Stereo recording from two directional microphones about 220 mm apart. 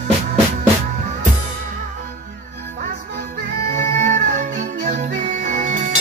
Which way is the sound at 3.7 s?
35° right (ahead or behind).